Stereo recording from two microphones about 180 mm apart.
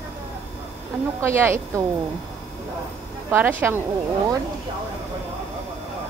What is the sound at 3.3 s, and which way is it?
Speech, 10° right (ahead or behind).